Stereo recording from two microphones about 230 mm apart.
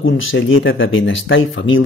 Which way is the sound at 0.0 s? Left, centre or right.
Left.